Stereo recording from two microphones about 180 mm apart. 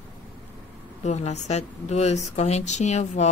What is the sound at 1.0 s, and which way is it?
Speech, 40° left (ahead or behind).